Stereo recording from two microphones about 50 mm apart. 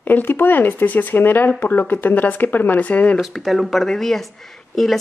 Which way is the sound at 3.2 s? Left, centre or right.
Centre.